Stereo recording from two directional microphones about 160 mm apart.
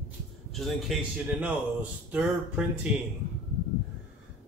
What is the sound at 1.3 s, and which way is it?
Speech, 10° right (ahead or behind).